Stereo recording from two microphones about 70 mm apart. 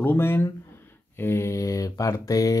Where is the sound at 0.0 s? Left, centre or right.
Left.